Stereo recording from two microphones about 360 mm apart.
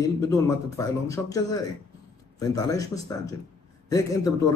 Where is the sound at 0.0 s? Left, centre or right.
Centre.